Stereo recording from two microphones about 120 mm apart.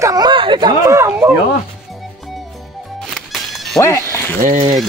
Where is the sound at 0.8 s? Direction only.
25° right (ahead or behind).